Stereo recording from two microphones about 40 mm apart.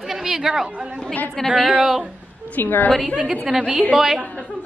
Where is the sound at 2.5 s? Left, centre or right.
Left.